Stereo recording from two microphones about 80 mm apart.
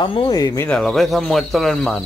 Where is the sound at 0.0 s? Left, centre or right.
Left.